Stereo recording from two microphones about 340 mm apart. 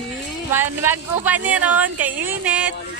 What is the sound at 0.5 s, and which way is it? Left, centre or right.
Speech, centre.